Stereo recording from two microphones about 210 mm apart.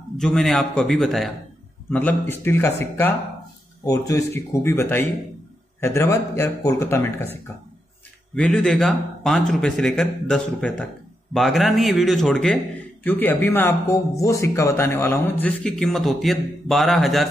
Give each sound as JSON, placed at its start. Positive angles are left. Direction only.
{"t": 0.2, "sound": "a man's voice", "side_deg": 0}
{"t": 8.4, "sound": "a man's voice", "side_deg": 5}